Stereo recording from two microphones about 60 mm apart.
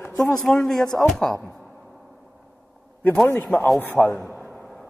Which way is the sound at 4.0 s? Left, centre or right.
Centre.